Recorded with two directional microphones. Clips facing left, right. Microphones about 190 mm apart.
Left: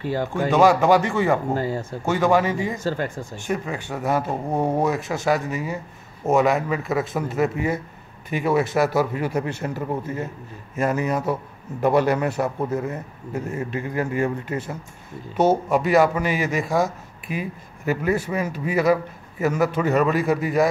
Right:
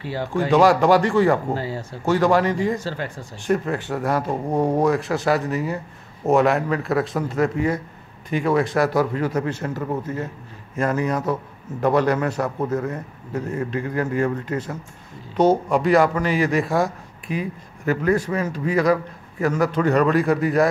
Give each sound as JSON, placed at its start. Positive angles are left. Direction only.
{"t": 0.0, "sound": "speech", "side_deg": 45}
{"t": 0.3, "sound": "speech", "side_deg": 0}
{"t": 1.6, "sound": "speech", "side_deg": 50}
{"t": 2.0, "sound": "speech", "side_deg": 0}
{"t": 2.8, "sound": "speech", "side_deg": 45}
{"t": 3.4, "sound": "a man's voice", "side_deg": 0}